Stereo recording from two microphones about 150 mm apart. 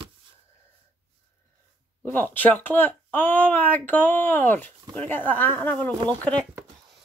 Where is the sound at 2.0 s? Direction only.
10° left (ahead or behind).